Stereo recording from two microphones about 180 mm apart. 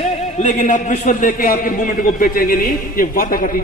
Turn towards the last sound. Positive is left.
turn(degrees=50)  # may be behind; listen again after turning